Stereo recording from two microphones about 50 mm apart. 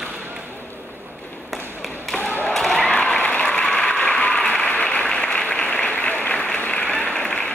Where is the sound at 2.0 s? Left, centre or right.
Centre.